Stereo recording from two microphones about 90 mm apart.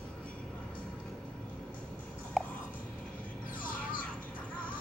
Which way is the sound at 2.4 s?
Centre (ahead or behind).